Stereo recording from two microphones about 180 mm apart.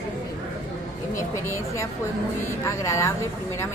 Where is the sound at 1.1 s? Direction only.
15° left (ahead or behind).